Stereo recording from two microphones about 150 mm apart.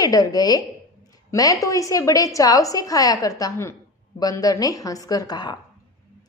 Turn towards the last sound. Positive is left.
turn(degrees=25)  # may be behind; listen again after turning